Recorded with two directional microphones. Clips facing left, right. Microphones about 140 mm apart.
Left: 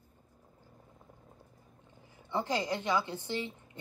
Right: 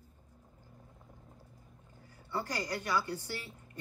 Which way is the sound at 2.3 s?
20° left (ahead or behind).